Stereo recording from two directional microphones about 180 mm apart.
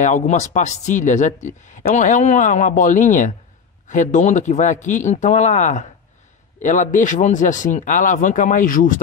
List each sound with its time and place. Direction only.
0.0 s speech: 40° left (ahead or behind)